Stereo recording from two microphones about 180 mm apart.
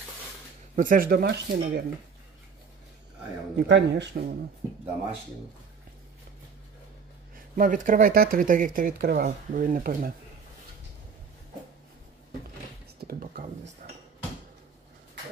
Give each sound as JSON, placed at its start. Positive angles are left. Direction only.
{"t": 0.7, "sound": "speech", "side_deg": -50}
{"t": 3.5, "sound": "speech", "side_deg": -70}
{"t": 7.3, "sound": "speech", "side_deg": -50}
{"t": 13.0, "sound": "speech", "side_deg": -55}